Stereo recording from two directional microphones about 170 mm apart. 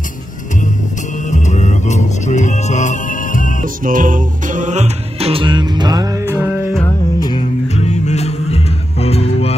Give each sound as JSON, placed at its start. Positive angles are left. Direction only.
{"t": 1.3, "sound": "music", "side_deg": 45}
{"t": 3.6, "sound": "music", "side_deg": -55}
{"t": 6.9, "sound": "music", "side_deg": 20}
{"t": 7.3, "sound": "music", "side_deg": 40}